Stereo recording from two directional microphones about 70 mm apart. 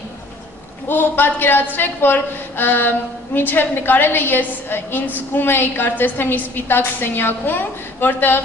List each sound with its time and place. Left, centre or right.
0.8 s a woman's voice: left